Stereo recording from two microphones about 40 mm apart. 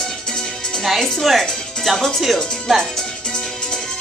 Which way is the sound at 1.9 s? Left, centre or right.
Centre.